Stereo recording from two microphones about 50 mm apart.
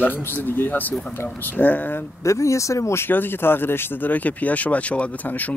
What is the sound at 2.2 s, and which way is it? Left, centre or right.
Speech, left.